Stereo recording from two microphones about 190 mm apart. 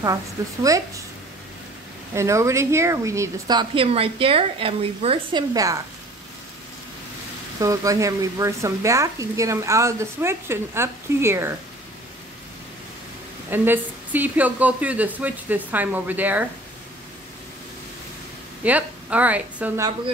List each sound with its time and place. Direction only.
0.0 s speech: 15° right (ahead or behind)
2.1 s a woman's voice: 15° right (ahead or behind)
7.5 s speech: 15° right (ahead or behind)
13.5 s speech: 10° right (ahead or behind)
18.6 s a woman's voice: 10° right (ahead or behind)